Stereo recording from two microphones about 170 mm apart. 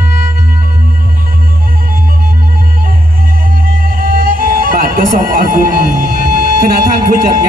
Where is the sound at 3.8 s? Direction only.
55° right (ahead or behind).